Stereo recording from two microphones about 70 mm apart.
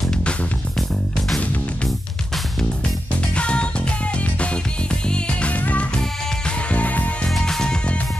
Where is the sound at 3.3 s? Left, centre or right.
Centre.